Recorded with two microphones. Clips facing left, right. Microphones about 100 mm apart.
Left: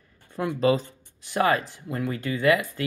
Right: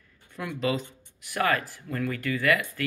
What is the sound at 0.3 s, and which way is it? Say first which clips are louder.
Speech: left 6 dB; 30° left (ahead or behind).